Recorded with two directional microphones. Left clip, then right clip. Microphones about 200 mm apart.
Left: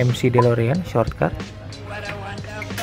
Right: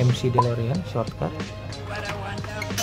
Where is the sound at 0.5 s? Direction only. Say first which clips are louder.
Left 9 dB; 20° left (ahead or behind).